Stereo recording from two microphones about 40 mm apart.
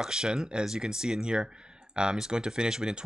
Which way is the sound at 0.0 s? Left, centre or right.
Centre.